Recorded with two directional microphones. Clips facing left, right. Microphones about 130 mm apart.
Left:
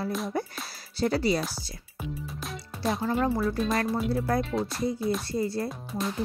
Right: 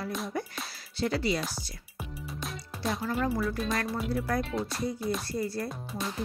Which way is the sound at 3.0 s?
35° left (ahead or behind).